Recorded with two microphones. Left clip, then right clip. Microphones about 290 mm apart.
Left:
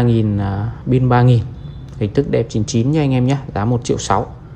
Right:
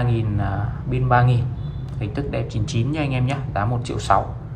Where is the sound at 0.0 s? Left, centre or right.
Left.